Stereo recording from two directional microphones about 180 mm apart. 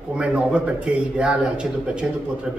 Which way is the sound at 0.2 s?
5° right (ahead or behind).